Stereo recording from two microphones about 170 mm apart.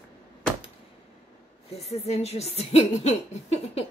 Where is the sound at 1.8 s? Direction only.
40° left (ahead or behind).